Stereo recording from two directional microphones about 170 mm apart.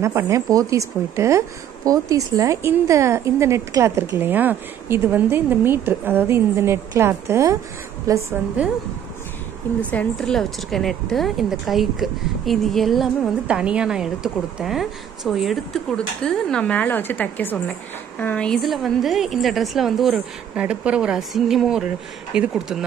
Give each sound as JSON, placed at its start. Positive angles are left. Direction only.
{"t": 0.0, "sound": "a woman's voice", "side_deg": -15}
{"t": 8.6, "sound": "speech", "side_deg": -5}
{"t": 9.8, "sound": "speech", "side_deg": 10}